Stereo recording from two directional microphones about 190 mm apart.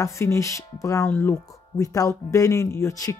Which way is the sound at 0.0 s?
15° left (ahead or behind).